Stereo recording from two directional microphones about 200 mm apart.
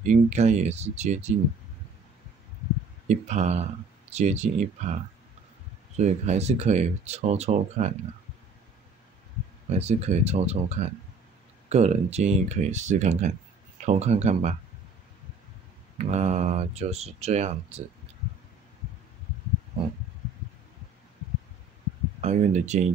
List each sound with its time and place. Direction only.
0.0 s speech: 35° right (ahead or behind)
3.1 s speech: 35° right (ahead or behind)
5.9 s speech: 35° right (ahead or behind)
9.7 s speech: 30° right (ahead or behind)
16.0 s speech: 35° right (ahead or behind)
22.2 s speech: 35° right (ahead or behind)